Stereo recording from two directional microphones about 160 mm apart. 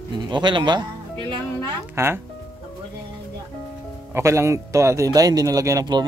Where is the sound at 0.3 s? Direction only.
30° right (ahead or behind).